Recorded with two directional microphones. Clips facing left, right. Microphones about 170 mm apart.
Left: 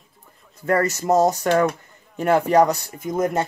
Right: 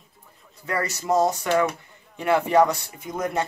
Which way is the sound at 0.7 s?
45° left (ahead or behind).